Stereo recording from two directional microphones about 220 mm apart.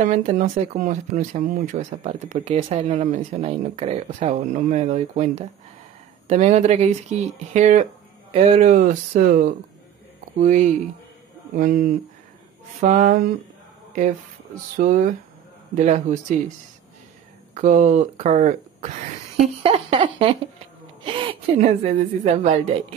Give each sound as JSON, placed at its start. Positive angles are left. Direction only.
{"t": 0.0, "sound": "speech", "side_deg": -35}
{"t": 14.8, "sound": "speech", "side_deg": -35}
{"t": 17.6, "sound": "a woman's voice", "side_deg": -35}